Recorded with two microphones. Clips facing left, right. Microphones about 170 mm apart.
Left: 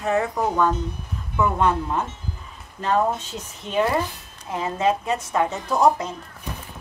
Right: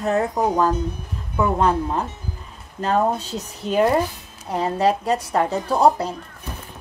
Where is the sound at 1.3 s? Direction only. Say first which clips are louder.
Right 2 dB; 35° right (ahead or behind).